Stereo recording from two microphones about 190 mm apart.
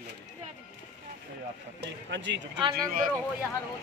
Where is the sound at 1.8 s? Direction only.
70° right (ahead or behind).